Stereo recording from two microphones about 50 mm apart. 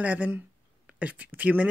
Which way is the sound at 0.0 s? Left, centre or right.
Right.